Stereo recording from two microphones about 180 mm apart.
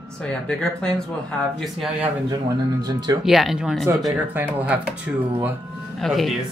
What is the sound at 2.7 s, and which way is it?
Speech, 20° right (ahead or behind).